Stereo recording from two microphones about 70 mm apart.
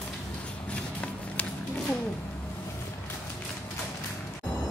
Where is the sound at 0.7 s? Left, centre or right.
Centre.